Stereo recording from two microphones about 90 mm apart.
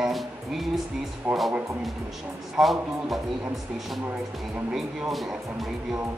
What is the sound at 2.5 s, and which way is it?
Speech, centre (ahead or behind).